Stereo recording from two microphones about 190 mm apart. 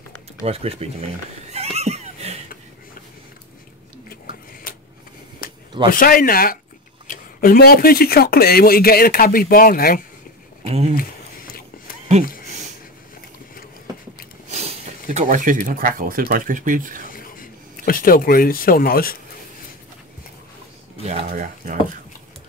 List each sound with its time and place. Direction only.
0.4 s speech: 30° right (ahead or behind)
1.5 s neigh: 35° right (ahead or behind)
4.7 s a sound: 50° left (ahead or behind)
5.9 s speech: 50° left (ahead or behind)
10.6 s speech: 30° right (ahead or behind)
11.0 s a sound: 50° left (ahead or behind)
14.5 s speech: 40° right (ahead or behind)
17.1 s speech: 50° left (ahead or behind)
21.0 s speech: 35° right (ahead or behind)